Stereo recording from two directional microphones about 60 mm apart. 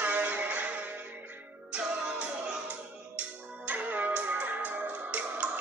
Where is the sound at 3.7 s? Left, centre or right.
Right.